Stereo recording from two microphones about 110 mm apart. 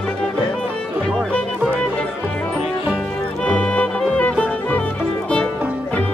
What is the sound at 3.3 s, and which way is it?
Music, 10° left (ahead or behind).